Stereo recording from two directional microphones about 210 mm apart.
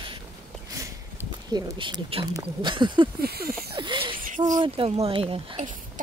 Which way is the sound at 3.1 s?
45° right (ahead or behind).